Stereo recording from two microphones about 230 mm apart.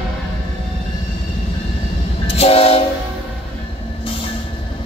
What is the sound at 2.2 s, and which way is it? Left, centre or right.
Train, left.